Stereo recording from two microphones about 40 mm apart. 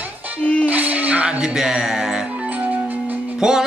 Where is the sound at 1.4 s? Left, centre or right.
Centre.